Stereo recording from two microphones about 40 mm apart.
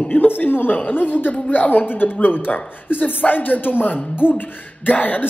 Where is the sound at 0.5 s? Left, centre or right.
Left.